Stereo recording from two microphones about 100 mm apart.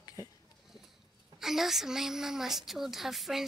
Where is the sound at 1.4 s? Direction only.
5° right (ahead or behind).